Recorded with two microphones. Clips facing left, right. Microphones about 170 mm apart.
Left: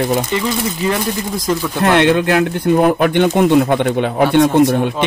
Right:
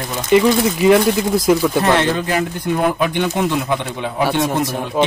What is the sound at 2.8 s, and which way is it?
Speech, 55° left (ahead or behind).